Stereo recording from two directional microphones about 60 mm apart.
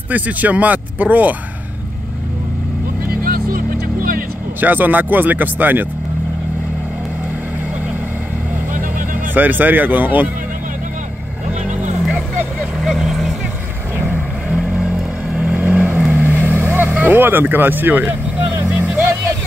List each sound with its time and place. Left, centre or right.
0.1 s speech: right
4.6 s speech: right
9.3 s speech: right
12.1 s vehicle: right
12.8 s vehicle: centre
13.9 s vehicle: right
14.5 s vehicle: centre
15.6 s vehicle: right
16.7 s speech: right
18.7 s vehicle: right